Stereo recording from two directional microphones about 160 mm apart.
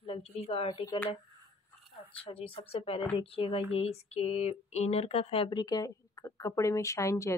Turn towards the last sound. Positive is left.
turn(degrees=20)  # may be behind; listen again after turning